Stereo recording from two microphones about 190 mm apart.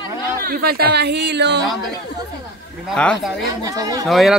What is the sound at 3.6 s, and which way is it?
Speech, 20° right (ahead or behind).